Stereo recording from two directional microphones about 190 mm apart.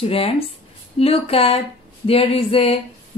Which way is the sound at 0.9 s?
30° left (ahead or behind).